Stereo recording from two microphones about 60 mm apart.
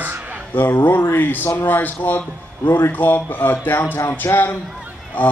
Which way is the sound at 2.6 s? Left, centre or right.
Left.